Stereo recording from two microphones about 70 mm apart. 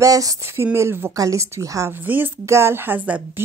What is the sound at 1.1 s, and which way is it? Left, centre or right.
Speech, right.